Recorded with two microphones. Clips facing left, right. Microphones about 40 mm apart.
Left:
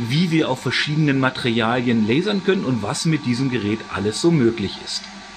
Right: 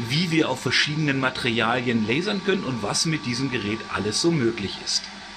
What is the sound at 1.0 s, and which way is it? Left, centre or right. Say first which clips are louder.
Speech: left 5 dB; centre.